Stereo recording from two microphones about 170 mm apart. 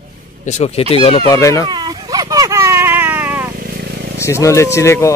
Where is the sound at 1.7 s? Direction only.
25° right (ahead or behind).